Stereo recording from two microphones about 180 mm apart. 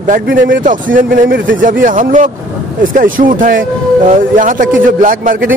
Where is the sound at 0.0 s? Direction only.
50° right (ahead or behind).